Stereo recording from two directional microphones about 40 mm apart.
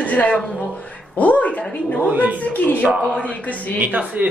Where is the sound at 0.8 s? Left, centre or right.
Left.